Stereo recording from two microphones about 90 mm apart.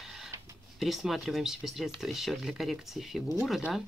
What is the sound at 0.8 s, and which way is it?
Speech, centre (ahead or behind).